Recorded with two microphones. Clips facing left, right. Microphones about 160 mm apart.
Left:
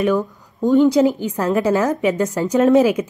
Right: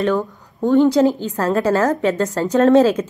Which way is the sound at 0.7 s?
20° left (ahead or behind).